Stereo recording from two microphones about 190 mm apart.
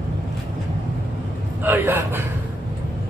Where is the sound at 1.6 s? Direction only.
10° right (ahead or behind).